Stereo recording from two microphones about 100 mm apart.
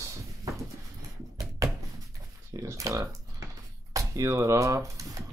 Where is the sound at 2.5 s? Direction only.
35° right (ahead or behind).